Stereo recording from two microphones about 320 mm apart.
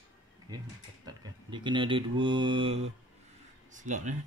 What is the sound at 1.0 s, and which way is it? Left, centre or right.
Mantra, centre.